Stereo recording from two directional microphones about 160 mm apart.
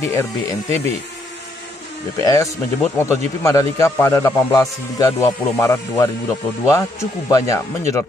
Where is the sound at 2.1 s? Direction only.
20° left (ahead or behind).